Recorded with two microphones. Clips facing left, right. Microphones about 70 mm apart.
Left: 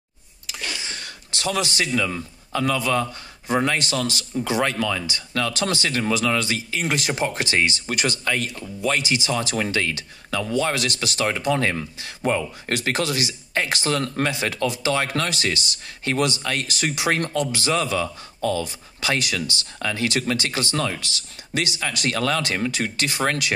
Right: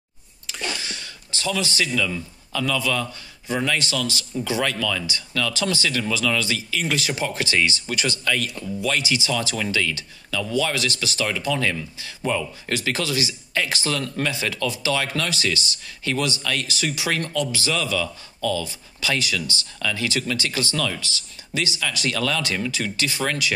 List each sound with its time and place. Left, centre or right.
0.9 s a sound: left
2.0 s speech: left
3.4 s a man's voice: left
5.5 s a man's voice: left
8.8 s speech: left
21.5 s a man's voice: left